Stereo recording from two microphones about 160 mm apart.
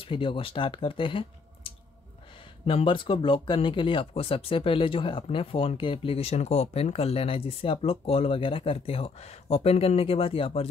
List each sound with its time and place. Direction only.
0.0 s speech: 30° left (ahead or behind)